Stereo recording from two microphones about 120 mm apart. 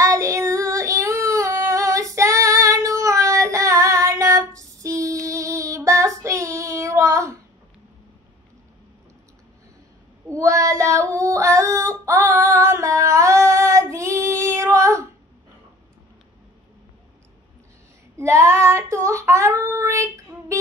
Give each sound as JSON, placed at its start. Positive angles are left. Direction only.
{"t": 0.0, "sound": "singing", "side_deg": -25}
{"t": 4.6, "sound": "female singing", "side_deg": -25}
{"t": 5.2, "sound": "child singing", "side_deg": -25}
{"t": 10.2, "sound": "female singing", "side_deg": -25}
{"t": 18.1, "sound": "child singing", "side_deg": -25}